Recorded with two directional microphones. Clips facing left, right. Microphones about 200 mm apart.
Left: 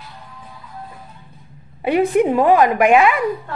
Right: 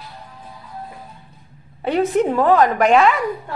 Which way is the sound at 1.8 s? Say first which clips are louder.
Left 2 dB; 10° left (ahead or behind).